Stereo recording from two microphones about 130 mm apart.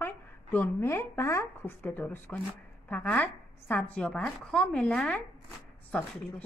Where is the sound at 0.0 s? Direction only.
15° left (ahead or behind).